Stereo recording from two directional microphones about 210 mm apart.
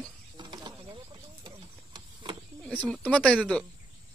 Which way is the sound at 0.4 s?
20° right (ahead or behind).